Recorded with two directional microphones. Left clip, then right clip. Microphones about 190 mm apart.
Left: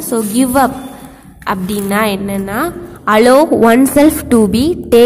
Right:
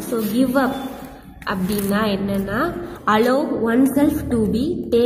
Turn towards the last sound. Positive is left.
turn(degrees=40)  # may be behind; listen again after turning